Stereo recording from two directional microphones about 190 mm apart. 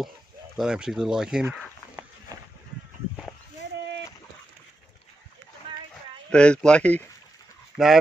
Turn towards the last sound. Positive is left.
turn(degrees=0)  # may be behind; listen again after turning